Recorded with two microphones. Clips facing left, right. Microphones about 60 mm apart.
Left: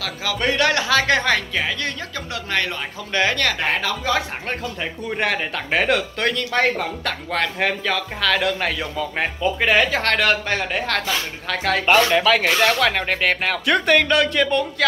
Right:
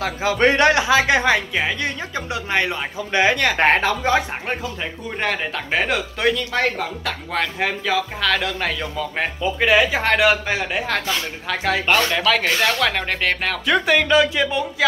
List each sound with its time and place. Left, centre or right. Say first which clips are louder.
0.0 s speech: right 5 dB; right
3.5 s a woman's voice: right 6 dB; right
5.2 s speech: even; centre
11.8 s speech: left 5 dB; centre